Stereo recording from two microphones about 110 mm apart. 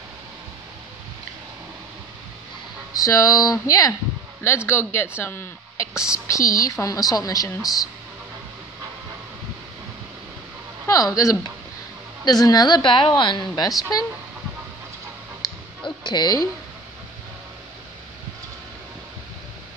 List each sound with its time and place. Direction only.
2.9 s a woman's voice: 30° left (ahead or behind)
5.9 s a woman's voice: 5° right (ahead or behind)
6.2 s a woman's voice: 30° left (ahead or behind)
10.9 s a woman's voice: 35° left (ahead or behind)
15.4 s a sound: 35° left (ahead or behind)
16.0 s speech: 40° left (ahead or behind)